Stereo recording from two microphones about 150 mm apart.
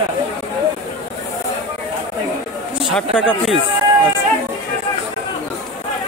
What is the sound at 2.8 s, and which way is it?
Speech, 5° left (ahead or behind).